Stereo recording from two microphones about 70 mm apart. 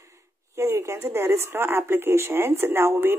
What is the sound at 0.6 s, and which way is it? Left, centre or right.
Speech, right.